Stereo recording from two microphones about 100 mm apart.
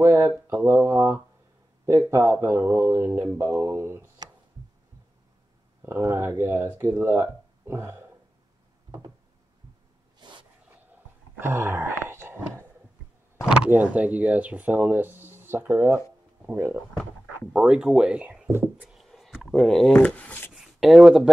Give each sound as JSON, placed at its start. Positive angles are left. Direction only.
{"t": 0.0, "sound": "mantra", "side_deg": -30}
{"t": 0.5, "sound": "speech", "side_deg": -25}
{"t": 5.8, "sound": "speech", "side_deg": -25}
{"t": 10.2, "sound": "a sound", "side_deg": -50}
{"t": 11.3, "sound": "wail", "side_deg": -25}
{"t": 13.7, "sound": "speech", "side_deg": -15}
{"t": 17.5, "sound": "speech", "side_deg": -5}
{"t": 18.5, "sound": "speech", "side_deg": -25}
{"t": 18.9, "sound": "a sound", "side_deg": 0}
{"t": 20.0, "sound": "speech", "side_deg": 15}
{"t": 20.5, "sound": "a sound", "side_deg": -5}